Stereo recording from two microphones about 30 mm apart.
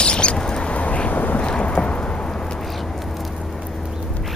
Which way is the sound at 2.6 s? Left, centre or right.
Centre.